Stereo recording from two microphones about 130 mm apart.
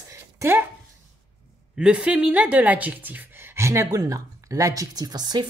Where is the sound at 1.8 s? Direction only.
10° right (ahead or behind).